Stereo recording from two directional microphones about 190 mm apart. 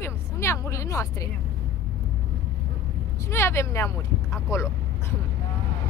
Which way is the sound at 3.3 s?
15° left (ahead or behind).